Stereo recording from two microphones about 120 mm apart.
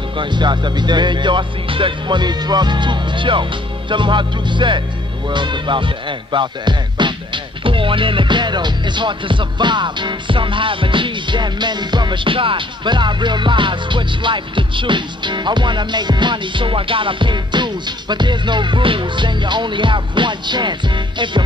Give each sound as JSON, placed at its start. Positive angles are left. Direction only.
{"t": 0.2, "sound": "music", "side_deg": -40}
{"t": 5.3, "sound": "speech", "side_deg": -40}
{"t": 7.6, "sound": "music", "side_deg": -45}